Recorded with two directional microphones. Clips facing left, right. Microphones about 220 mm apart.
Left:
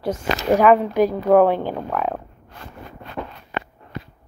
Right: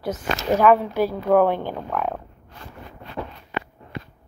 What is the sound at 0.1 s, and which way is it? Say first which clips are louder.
A woman's voice: left 3 dB; 10° left (ahead or behind).